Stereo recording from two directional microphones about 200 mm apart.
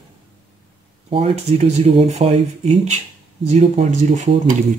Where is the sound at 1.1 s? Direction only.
30° right (ahead or behind).